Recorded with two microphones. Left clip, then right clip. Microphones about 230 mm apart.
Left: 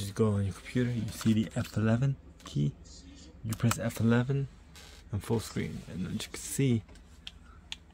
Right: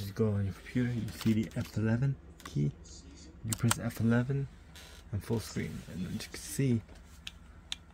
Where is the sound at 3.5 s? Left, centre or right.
Centre.